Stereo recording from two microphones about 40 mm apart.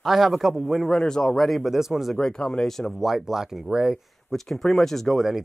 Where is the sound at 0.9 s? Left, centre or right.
Centre.